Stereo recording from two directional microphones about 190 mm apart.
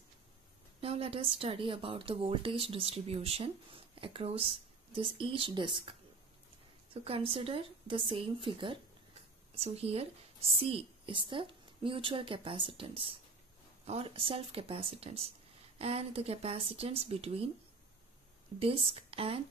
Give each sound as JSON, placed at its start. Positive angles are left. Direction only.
{"t": 0.7, "sound": "speech", "side_deg": -30}
{"t": 18.6, "sound": "speech", "side_deg": -30}